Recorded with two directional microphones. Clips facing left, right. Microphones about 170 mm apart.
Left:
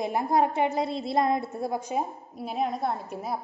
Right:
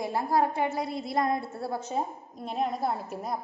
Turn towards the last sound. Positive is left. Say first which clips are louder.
# left 1 dB
turn(degrees=0)  # may be behind; listen again after turning